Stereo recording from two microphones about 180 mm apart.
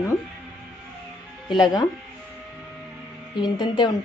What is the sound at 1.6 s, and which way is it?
Speech, 20° left (ahead or behind).